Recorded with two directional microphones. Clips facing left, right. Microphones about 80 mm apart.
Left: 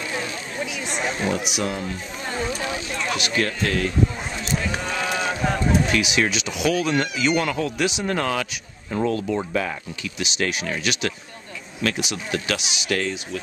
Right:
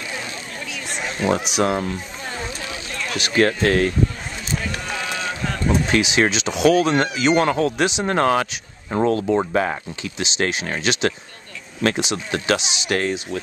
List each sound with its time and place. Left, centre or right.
1.2 s speech: left
1.6 s speech: right
2.9 s a sound: centre
3.3 s speech: right
5.0 s a sound: centre
5.9 s speech: right
7.7 s speech: right
8.1 s speech: right